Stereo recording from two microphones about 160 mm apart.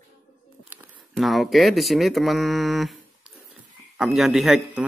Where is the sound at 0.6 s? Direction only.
10° right (ahead or behind).